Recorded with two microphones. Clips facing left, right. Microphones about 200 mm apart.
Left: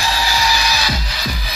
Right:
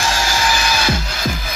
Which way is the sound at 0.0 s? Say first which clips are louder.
Even; 50° right (ahead or behind).